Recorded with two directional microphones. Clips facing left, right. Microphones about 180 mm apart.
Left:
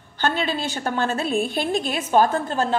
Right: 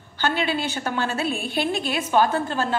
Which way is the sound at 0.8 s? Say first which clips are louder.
Left 2 dB; 40° left (ahead or behind).